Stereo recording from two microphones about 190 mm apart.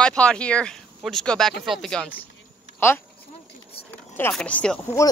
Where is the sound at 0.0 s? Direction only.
5° left (ahead or behind).